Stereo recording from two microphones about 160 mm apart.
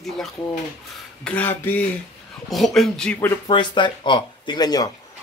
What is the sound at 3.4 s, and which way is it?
Speech, 30° left (ahead or behind).